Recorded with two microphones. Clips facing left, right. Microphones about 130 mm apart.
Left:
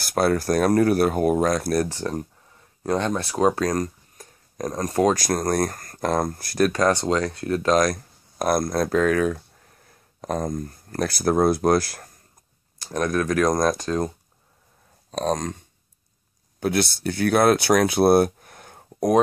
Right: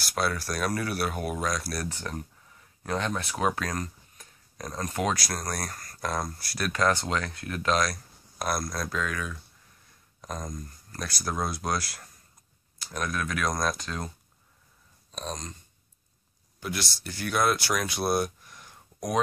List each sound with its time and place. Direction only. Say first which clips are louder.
0.0 s speech: left 9 dB; 50° left (ahead or behind)
7.0 s speech: left 8 dB; 30° left (ahead or behind)
7.7 s speech: left 6 dB; 45° left (ahead or behind)
17.8 s a sound: left 11 dB; 60° left (ahead or behind)